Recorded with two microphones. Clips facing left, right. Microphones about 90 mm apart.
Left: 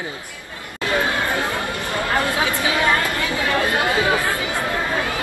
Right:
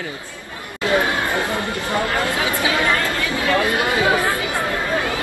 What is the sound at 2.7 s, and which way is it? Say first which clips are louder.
Speech: even; 20° left (ahead or behind).